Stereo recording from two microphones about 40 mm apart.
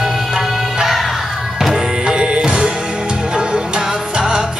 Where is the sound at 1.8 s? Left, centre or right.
Centre.